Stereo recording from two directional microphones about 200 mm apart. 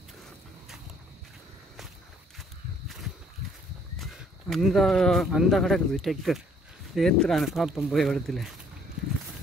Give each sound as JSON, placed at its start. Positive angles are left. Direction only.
{"t": 4.0, "sound": "speech", "side_deg": 0}